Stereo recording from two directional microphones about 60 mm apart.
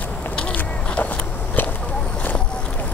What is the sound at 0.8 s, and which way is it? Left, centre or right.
Vehicle, left.